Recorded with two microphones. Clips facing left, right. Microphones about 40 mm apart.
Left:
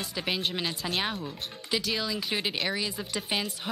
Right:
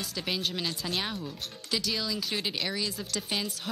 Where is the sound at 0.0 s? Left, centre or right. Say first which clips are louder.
Left 2 dB; centre.